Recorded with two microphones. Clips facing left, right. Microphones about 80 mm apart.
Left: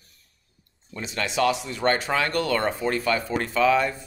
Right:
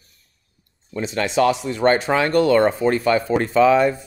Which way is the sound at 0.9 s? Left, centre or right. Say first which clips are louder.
Right 7 dB; right.